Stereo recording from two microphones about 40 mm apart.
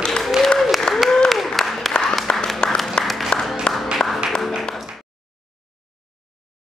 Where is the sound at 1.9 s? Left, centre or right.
Left.